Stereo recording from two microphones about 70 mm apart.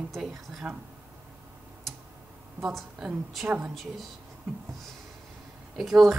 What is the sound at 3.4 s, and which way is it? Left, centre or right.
Speech, centre.